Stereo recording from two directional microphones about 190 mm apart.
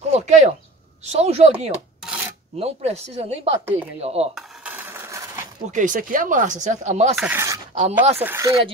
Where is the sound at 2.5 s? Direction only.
35° right (ahead or behind).